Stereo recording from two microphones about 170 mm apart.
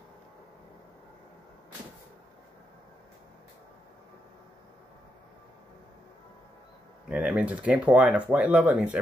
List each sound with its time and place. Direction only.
7.1 s speech: 5° right (ahead or behind)